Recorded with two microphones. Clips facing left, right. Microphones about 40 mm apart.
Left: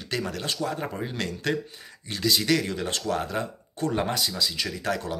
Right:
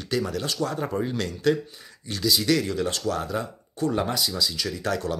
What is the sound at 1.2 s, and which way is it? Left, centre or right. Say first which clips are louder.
Speech: right 3 dB; left.